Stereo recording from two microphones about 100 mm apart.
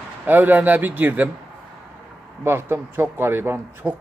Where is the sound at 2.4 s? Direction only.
25° right (ahead or behind).